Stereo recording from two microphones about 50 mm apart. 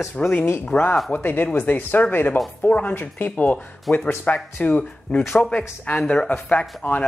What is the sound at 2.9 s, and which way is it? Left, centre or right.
Speech, left.